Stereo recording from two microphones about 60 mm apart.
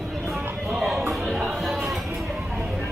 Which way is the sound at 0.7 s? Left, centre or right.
Centre.